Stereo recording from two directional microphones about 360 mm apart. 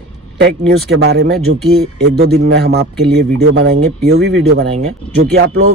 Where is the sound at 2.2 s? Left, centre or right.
Right.